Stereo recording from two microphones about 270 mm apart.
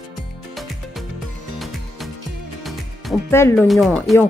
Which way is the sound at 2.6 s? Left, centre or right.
Centre.